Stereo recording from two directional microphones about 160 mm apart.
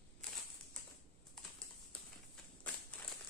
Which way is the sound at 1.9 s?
5° left (ahead or behind).